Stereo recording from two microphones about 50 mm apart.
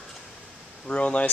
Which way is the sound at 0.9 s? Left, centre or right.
Left.